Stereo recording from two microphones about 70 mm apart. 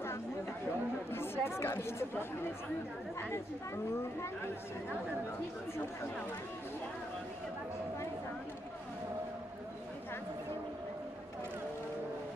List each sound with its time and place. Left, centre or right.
1.1 s speech: left